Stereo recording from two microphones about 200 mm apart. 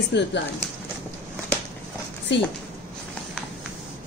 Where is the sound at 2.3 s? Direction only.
60° left (ahead or behind).